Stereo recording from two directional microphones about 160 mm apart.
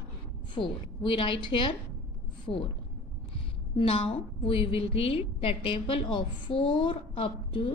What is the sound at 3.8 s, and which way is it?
A woman's voice, 35° left (ahead or behind).